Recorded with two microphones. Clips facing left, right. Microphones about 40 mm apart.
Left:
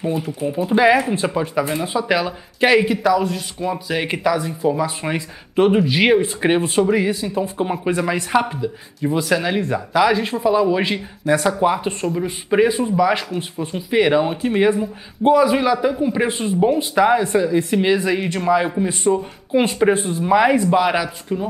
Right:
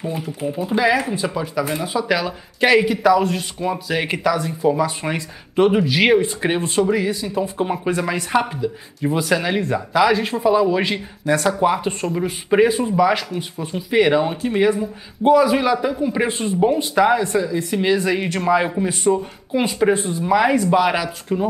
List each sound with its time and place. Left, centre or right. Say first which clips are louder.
0.2 s speech: left 2 dB; centre
0.8 s speech: left 3 dB; left
3.0 s speech: right 2 dB; centre
7.2 s speech: even; centre
17.1 s speech: left 2 dB; centre
18.0 s speech: even; centre
18.9 s speech: even; centre
21.3 s speech: right 3 dB; centre